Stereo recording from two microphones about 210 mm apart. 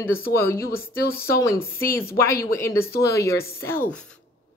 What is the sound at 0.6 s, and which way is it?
Speech, 45° left (ahead or behind).